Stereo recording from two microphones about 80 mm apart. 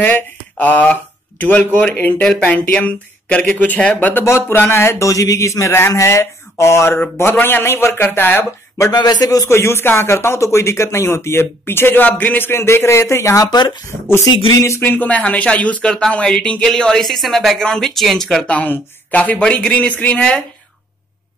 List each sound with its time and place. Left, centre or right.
0.0 s speech: centre
4.5 s speech: left
8.9 s speech: left
13.5 s speech: left
14.5 s speech: left
14.8 s speech: left; by 18.4 s centre
18.5 s speech: centre